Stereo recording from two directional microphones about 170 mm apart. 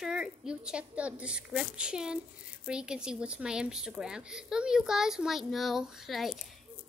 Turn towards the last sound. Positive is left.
turn(degrees=0)  # may be behind; listen again after turning